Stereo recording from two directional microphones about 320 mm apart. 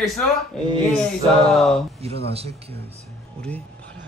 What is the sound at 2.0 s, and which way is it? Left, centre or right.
Speech, centre.